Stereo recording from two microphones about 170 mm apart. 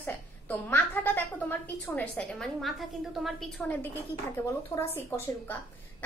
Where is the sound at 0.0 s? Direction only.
10° left (ahead or behind).